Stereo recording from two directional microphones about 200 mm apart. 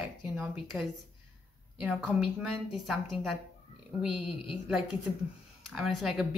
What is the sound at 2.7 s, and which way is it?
Speech, centre (ahead or behind).